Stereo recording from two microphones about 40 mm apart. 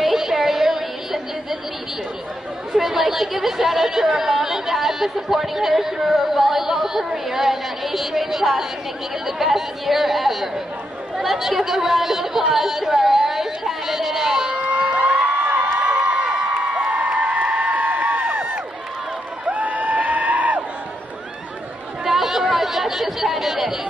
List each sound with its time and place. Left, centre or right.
0.0 s music: centre
2.8 s speech: centre
11.1 s chatter: centre
14.6 s crowd: right
19.4 s a sound: right
22.0 s chatter: centre